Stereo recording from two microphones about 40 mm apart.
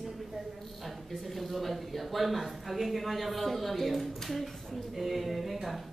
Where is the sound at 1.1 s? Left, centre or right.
Centre.